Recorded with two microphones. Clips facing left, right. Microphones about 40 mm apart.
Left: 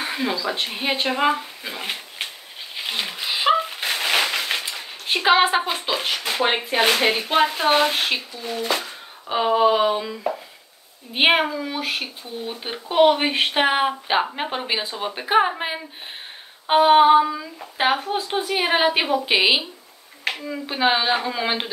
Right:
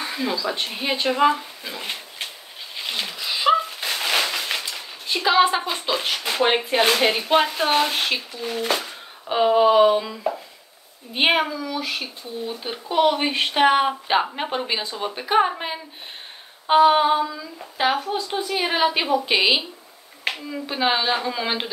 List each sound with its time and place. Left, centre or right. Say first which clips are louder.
0.0 s speech: left 1 dB; left
2.7 s a sound: left 1 dB; centre
5.0 s speech: left 1 dB; left
5.7 s speech: even; centre
11.1 s speech: left 2 dB; centre